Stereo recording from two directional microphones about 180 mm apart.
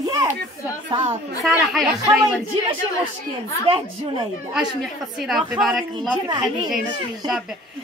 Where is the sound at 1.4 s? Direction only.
Centre (ahead or behind).